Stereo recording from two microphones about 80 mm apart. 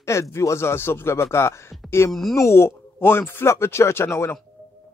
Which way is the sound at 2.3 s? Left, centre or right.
Left.